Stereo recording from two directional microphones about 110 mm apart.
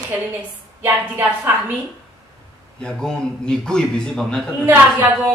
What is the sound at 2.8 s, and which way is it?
A man's voice, 5° left (ahead or behind).